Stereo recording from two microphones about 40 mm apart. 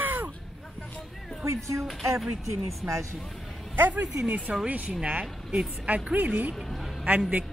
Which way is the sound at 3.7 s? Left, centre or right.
Right.